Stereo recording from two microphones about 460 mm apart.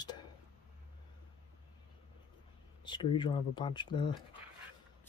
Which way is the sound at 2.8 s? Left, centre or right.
Centre.